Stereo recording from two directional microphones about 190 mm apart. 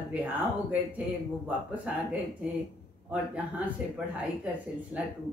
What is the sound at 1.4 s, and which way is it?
Speech, 5° right (ahead or behind).